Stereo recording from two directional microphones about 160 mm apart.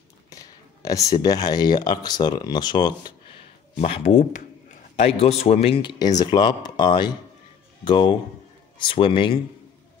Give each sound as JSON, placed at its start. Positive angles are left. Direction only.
{"t": 0.8, "sound": "speech", "side_deg": 20}
{"t": 3.8, "sound": "speech", "side_deg": 40}